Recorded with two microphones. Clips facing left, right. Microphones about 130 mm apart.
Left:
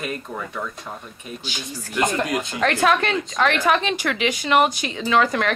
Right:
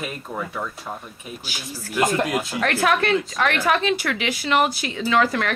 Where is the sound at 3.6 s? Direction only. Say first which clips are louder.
Even; 20° left (ahead or behind).